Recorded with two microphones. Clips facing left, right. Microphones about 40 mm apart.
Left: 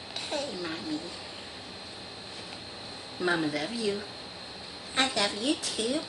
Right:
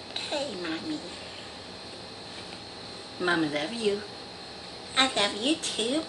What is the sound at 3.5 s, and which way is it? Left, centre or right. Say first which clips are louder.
Speech: right 1 dB; right.